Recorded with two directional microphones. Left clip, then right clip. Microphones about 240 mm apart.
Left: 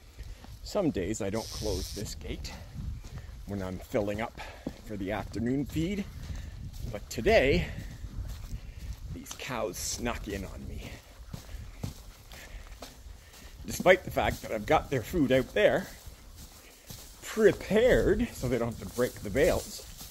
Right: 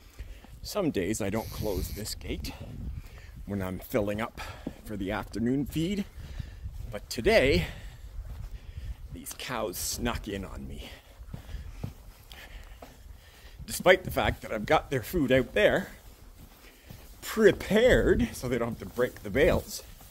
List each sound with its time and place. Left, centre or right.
0.7 s speech: centre
9.4 s speech: centre
13.7 s speech: centre
17.2 s speech: centre